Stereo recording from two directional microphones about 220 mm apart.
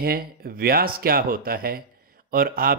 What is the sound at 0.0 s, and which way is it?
Speech, 45° right (ahead or behind).